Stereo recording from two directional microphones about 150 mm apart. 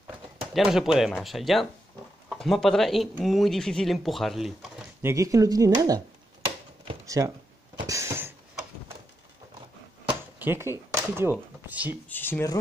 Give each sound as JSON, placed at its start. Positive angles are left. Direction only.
{"t": 0.6, "sound": "speech", "side_deg": -5}
{"t": 5.0, "sound": "speech", "side_deg": -20}
{"t": 7.1, "sound": "speech", "side_deg": -20}
{"t": 7.8, "sound": "a sound", "side_deg": -20}
{"t": 10.0, "sound": "a sound", "side_deg": -15}
{"t": 11.6, "sound": "speech", "side_deg": -10}
{"t": 12.1, "sound": "speech", "side_deg": 15}